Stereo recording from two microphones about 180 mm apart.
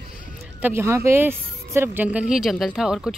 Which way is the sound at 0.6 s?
10° right (ahead or behind).